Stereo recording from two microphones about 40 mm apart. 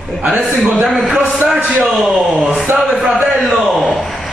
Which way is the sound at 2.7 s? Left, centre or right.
Right.